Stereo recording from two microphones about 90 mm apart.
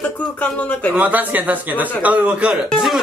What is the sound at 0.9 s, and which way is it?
A man's voice, 15° right (ahead or behind).